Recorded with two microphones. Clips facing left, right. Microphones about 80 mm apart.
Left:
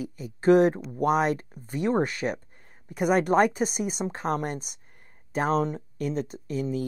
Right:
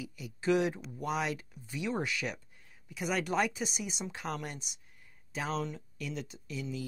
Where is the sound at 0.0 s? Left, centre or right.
Left.